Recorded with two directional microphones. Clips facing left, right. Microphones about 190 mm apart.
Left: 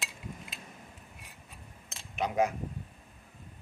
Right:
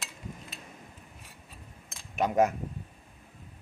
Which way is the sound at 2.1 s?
45° right (ahead or behind).